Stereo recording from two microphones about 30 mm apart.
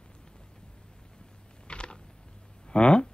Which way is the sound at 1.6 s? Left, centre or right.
Left.